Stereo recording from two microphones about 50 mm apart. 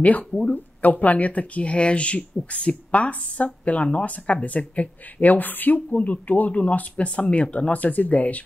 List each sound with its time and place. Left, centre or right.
0.3 s speech: centre
0.8 s speech: left